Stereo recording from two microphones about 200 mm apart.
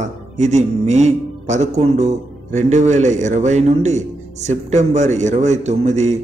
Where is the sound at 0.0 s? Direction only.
35° right (ahead or behind).